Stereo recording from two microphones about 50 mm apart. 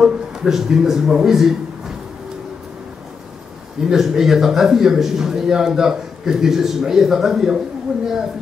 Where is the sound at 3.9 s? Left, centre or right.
Centre.